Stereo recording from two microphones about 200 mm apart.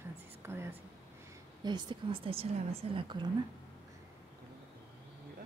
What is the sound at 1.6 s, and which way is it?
A woman's voice, 20° right (ahead or behind).